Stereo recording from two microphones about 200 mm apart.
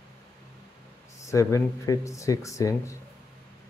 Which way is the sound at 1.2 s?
15° left (ahead or behind).